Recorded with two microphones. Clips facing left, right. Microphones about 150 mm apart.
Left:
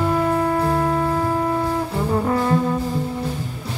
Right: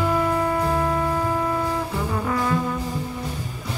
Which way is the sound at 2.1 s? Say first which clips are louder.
Left 5 dB; 35° left (ahead or behind).